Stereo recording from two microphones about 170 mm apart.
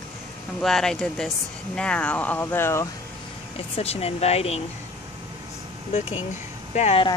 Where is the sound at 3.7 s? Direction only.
35° left (ahead or behind).